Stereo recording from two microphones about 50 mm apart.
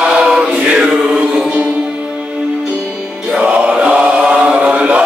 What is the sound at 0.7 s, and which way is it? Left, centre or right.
Chant, centre.